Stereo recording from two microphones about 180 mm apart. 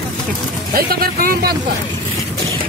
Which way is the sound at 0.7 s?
55° right (ahead or behind).